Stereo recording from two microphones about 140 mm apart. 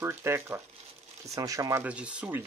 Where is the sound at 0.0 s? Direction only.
15° right (ahead or behind).